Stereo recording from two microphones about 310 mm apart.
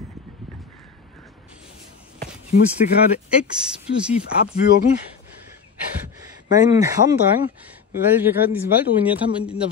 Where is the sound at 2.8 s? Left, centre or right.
Left.